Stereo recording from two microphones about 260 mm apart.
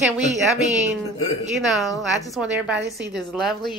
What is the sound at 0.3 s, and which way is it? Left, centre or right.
Speech, right.